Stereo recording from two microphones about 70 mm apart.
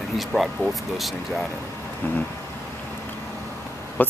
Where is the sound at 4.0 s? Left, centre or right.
Left.